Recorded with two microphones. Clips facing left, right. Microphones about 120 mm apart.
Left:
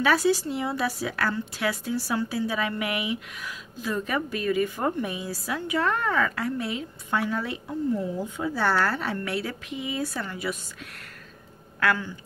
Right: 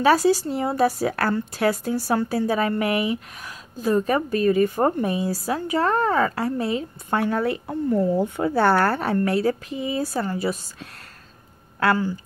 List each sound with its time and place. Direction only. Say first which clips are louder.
0.0 s a woman's voice: right 5 dB; 40° right (ahead or behind)